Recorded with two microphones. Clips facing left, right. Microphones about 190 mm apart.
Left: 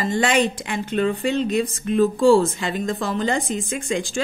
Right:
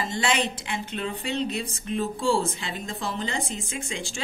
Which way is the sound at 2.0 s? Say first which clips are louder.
Left 10 dB; 90° left.